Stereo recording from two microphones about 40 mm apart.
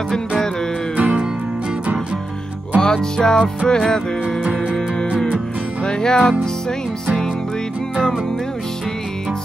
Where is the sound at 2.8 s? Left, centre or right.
Centre.